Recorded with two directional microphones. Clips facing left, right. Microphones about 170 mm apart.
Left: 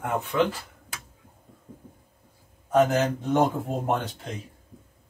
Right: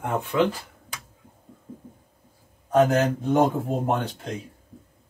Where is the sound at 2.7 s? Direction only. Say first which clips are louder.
Right 2 dB; centre (ahead or behind).